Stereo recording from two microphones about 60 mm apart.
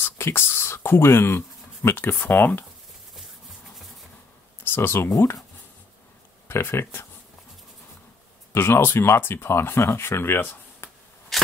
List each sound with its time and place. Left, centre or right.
0.0 s speech: left
2.1 s speech: left
4.6 s speech: left
6.4 s speech: left
8.5 s speech: left
11.3 s a sound: centre